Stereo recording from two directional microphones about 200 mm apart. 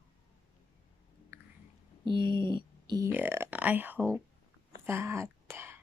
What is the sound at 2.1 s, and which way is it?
Speech, 25° right (ahead or behind).